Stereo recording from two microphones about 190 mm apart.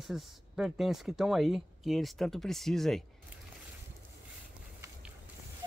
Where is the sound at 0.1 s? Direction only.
Centre (ahead or behind).